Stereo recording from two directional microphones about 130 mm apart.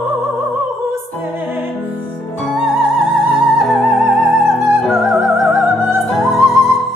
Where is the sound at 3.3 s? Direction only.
Centre (ahead or behind).